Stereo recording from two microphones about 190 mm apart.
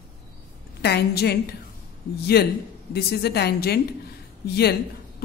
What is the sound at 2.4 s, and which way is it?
A woman's voice, 60° left (ahead or behind).